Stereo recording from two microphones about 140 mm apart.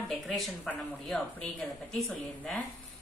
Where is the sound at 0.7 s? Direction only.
5° left (ahead or behind).